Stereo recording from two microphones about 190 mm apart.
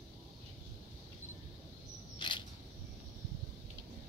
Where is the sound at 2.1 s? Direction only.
25° left (ahead or behind).